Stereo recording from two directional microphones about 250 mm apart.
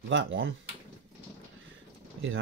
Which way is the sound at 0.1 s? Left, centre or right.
Right.